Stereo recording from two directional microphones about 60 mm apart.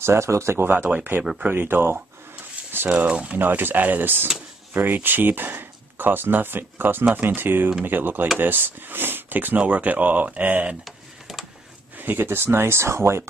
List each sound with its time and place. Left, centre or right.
0.0 s speech: right
0.9 s speech: right
2.9 s speech: centre
3.3 s speech: right
12.0 s speech: right